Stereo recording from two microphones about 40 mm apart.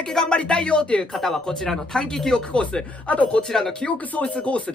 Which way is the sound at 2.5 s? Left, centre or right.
Left.